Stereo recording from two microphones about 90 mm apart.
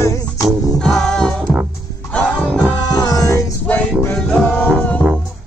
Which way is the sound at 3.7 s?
15° left (ahead or behind).